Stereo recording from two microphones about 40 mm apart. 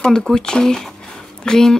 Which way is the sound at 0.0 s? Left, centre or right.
Centre.